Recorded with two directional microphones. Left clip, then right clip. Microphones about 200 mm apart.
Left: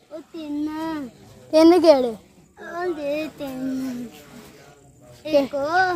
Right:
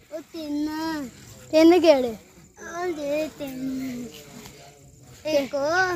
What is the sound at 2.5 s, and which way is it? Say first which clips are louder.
Speech: left 2 dB; centre (ahead or behind).